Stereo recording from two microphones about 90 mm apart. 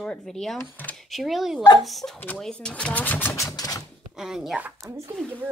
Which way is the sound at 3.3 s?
35° left (ahead or behind).